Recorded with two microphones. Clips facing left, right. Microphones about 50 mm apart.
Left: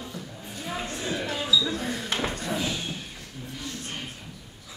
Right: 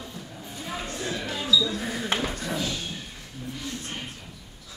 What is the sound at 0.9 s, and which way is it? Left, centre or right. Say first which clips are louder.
Basketball bounce: left 1 dB; left.